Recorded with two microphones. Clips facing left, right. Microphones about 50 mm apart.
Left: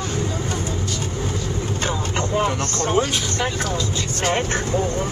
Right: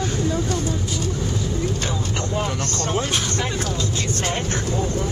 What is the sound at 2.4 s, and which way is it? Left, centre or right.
Speech, left.